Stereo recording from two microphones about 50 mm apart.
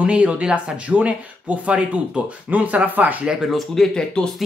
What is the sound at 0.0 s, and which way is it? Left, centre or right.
Speech, right.